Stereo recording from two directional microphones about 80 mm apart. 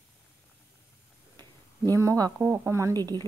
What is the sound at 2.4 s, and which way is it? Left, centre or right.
Speech, right.